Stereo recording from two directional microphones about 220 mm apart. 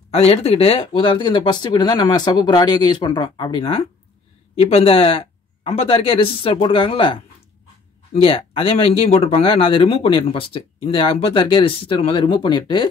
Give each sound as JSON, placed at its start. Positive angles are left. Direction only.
{"t": 0.1, "sound": "speech", "side_deg": 25}
{"t": 8.2, "sound": "speech", "side_deg": 25}